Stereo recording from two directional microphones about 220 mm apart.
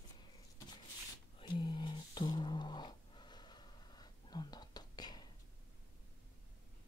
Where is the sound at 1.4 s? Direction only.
20° left (ahead or behind).